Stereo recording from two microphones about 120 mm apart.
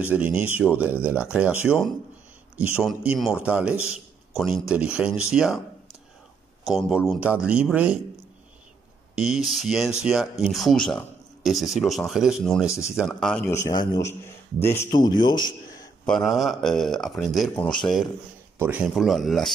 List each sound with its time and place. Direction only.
0.0 s a man's voice: 10° right (ahead or behind)
7.1 s a man's voice: 10° right (ahead or behind)
9.1 s speech: 5° right (ahead or behind)
13.5 s a man's voice: 25° left (ahead or behind)
14.9 s a man's voice: 35° left (ahead or behind)
16.1 s speech: centre (ahead or behind)
18.6 s a man's voice: 15° right (ahead or behind)
18.9 s speech: centre (ahead or behind)